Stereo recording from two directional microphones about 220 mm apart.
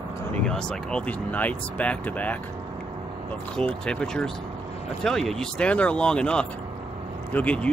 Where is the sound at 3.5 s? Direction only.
5° left (ahead or behind).